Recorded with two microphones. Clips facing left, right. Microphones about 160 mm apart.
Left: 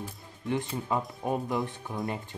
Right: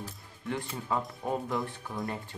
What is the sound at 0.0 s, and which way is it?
Speech, 20° left (ahead or behind).